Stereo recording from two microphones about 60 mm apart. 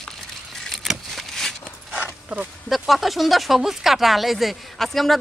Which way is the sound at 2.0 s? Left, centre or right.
Right.